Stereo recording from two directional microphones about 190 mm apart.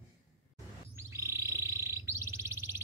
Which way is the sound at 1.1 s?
15° right (ahead or behind).